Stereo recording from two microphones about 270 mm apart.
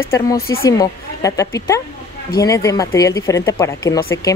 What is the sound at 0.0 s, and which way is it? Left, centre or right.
Speech, centre.